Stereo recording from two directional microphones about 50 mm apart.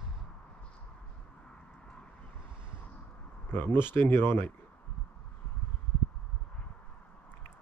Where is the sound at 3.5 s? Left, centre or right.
Left.